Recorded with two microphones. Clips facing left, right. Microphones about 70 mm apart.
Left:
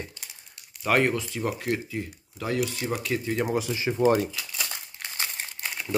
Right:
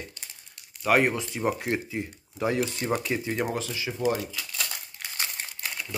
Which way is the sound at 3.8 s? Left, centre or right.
Left.